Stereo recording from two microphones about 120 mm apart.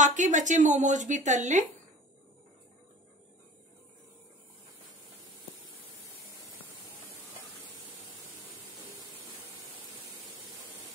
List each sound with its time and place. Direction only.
0.0 s a woman's voice: 90° right